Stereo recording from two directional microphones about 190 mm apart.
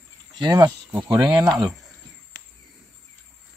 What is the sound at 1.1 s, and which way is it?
Speech, 20° right (ahead or behind).